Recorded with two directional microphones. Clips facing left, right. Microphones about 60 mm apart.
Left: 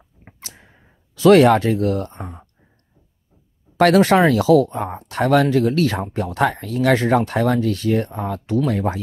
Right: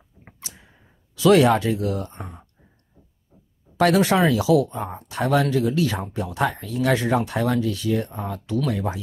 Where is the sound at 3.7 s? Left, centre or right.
Left.